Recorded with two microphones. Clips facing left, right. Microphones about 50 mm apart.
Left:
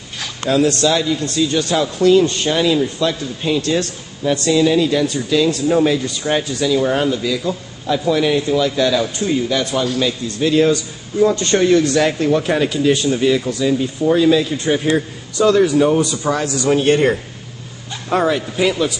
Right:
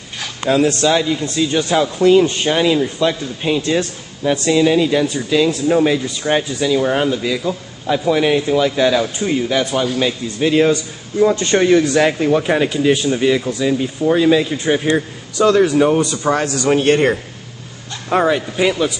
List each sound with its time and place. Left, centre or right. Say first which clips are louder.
0.5 s a man's voice: right 1 dB; right
16.3 s speech: right 3 dB; right
18.1 s speech: right 1 dB; centre